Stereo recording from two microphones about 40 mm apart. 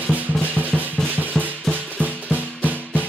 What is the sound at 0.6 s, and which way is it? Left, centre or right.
Drum, right.